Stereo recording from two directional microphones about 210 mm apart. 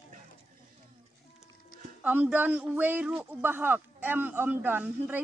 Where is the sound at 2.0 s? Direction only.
10° right (ahead or behind).